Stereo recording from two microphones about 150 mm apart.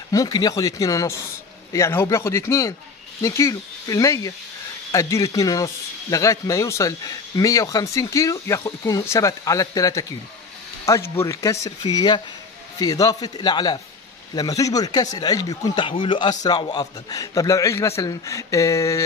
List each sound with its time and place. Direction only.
0.1 s a man's voice: 25° left (ahead or behind)